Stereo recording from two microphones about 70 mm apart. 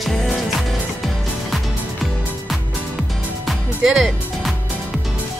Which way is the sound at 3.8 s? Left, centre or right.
Centre.